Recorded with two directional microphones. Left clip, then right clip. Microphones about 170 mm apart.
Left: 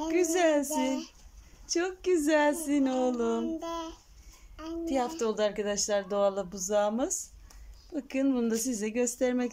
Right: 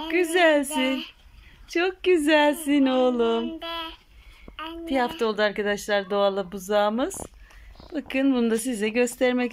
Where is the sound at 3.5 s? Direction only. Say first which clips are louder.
Right 4 dB; 40° left (ahead or behind).